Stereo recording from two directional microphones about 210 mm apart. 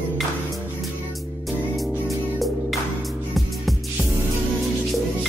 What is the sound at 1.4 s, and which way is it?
Music, centre (ahead or behind).